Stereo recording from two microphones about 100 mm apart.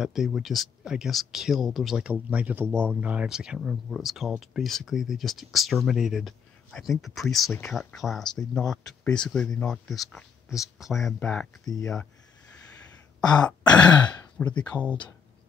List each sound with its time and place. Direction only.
0.0 s speech: 5° right (ahead or behind)
2.0 s speech: 15° right (ahead or behind); by 11.4 s 5° left (ahead or behind)
11.6 s speech: 40° left (ahead or behind)
13.7 s throat clearing: 10° left (ahead or behind)
14.6 s speech: 15° left (ahead or behind)